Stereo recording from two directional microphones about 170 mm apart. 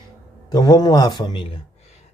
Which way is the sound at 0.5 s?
20° left (ahead or behind).